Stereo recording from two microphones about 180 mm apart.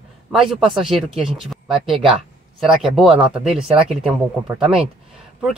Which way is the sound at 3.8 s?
30° right (ahead or behind).